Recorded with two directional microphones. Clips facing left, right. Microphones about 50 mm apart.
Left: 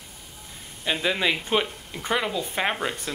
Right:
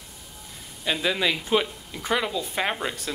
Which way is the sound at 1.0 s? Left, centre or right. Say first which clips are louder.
Left 1 dB; centre.